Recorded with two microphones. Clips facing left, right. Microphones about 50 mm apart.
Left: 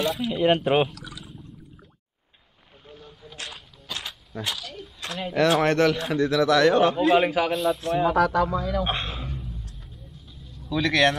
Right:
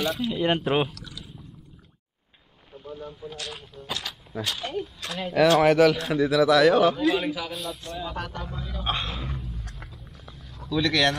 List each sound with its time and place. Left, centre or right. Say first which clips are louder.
0.0 s speech: left 2 dB; centre
3.0 s a sound: right 8 dB; centre
4.6 s speech: right 8 dB; right
5.2 s speech: right 2 dB; centre
6.1 s speech: left 1 dB; centre
7.0 s a man's voice: left 5 dB; left
7.5 s speech: left 10 dB; centre
8.1 s speech: left 13 dB; left
8.8 s speech: left 1 dB; centre
10.7 s speech: left 2 dB; centre